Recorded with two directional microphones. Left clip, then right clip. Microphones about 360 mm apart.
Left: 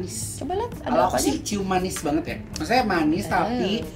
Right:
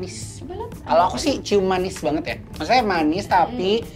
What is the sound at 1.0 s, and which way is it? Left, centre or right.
A woman's voice, right.